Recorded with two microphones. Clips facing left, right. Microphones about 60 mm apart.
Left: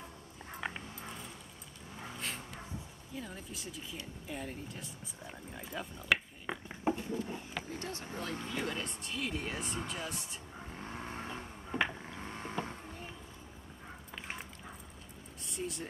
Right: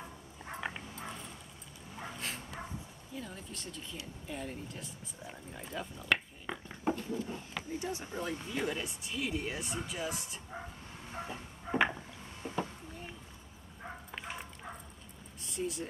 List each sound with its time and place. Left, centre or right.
0.6 s dog: centre
2.0 s dog: centre
3.2 s speech: centre
7.0 s a sound: centre
7.8 s speech: centre
8.5 s speech: centre
10.8 s vehicle: left
12.2 s vehicle: left
15.4 s speech: centre